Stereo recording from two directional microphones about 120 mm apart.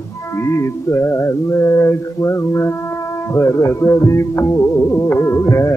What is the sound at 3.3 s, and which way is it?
Music, 25° left (ahead or behind).